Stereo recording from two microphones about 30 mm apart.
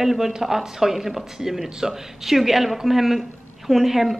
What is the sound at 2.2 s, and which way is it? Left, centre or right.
A woman's voice, centre.